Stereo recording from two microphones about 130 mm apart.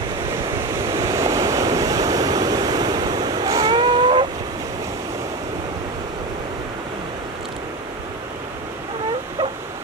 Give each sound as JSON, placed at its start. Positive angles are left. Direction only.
{"t": 0.8, "sound": "waves", "side_deg": -25}